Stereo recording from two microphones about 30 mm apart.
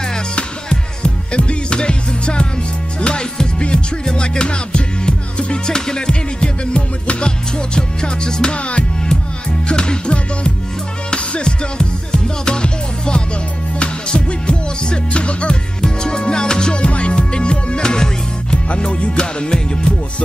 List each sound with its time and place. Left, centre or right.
0.7 s music: left
8.5 s music: left
9.7 s music: left
11.4 s music: left
15.8 s music: left
16.8 s music: left